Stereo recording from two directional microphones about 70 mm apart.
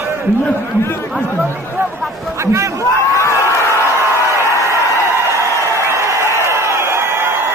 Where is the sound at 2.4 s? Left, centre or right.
Right.